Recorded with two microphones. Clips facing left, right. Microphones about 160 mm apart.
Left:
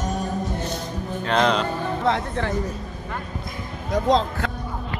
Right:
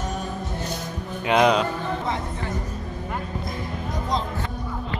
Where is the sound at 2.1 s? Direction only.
90° left.